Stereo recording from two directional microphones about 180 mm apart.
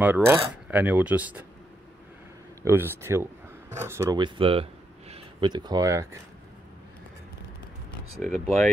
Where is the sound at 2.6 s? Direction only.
15° right (ahead or behind).